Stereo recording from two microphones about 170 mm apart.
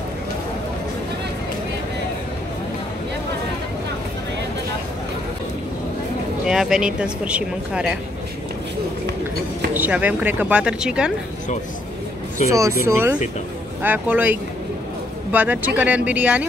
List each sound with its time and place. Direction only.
6.4 s speech: 5° right (ahead or behind)
9.8 s speech: 10° right (ahead or behind)
12.4 s speech: 20° right (ahead or behind)